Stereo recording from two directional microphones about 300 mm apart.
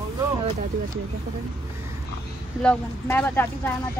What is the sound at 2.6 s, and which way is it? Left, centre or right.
Speech, centre.